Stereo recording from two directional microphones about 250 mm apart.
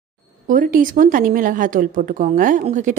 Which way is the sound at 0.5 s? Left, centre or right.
Right.